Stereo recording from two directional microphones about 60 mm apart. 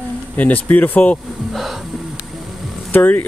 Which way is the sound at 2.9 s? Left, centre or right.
Left.